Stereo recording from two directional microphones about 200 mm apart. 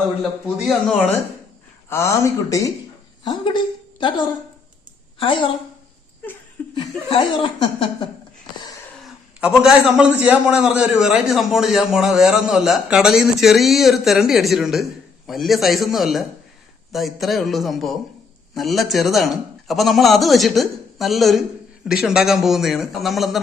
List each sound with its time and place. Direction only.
0.2 s a man's voice: centre (ahead or behind)
1.9 s a woman's voice: 15° left (ahead or behind)
7.1 s speech: 25° left (ahead or behind)
9.4 s a man's voice: 5° right (ahead or behind)